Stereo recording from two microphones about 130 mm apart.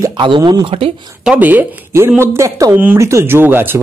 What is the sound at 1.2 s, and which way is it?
Speech, 10° right (ahead or behind).